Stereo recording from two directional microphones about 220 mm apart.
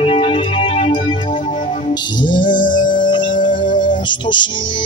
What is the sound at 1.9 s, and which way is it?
Music, 20° left (ahead or behind).